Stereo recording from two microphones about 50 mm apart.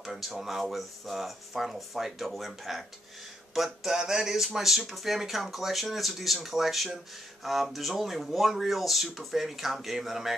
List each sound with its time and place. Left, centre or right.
0.0 s speech: centre
3.5 s a sound: centre
4.6 s speech: centre